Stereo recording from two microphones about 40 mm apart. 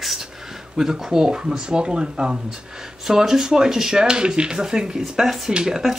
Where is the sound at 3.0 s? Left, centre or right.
Centre.